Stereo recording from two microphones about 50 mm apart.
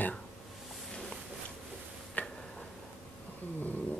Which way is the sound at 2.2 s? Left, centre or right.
Left.